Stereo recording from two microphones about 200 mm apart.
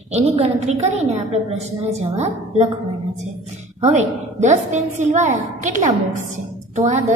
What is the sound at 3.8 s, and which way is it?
A woman's voice, 35° right (ahead or behind).